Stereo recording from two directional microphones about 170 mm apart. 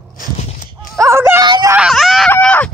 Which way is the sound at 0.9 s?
15° right (ahead or behind).